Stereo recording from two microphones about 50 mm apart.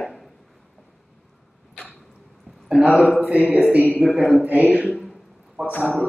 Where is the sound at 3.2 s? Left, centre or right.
Right.